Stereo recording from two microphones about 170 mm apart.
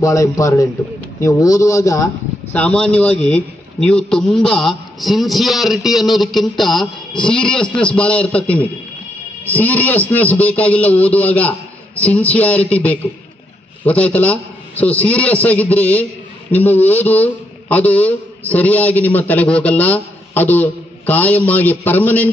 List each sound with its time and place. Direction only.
0.0 s a man's voice: 20° left (ahead or behind)
2.5 s a man's voice: 10° left (ahead or behind)